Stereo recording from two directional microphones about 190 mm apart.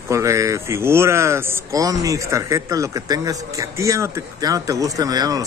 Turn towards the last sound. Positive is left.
turn(degrees=-20)  # may be behind; listen again after turning